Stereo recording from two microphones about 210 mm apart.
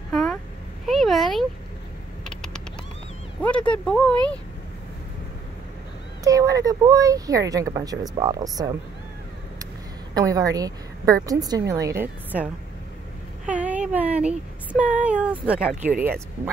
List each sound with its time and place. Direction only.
0.1 s a sound: centre (ahead or behind)
3.4 s speech: 5° left (ahead or behind)
6.2 s speech: 15° right (ahead or behind)
10.1 s speech: 15° right (ahead or behind)
13.5 s speech: 5° right (ahead or behind)